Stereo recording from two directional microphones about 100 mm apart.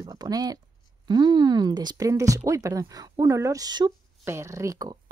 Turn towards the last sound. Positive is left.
turn(degrees=-35)  # may be behind; listen again after turning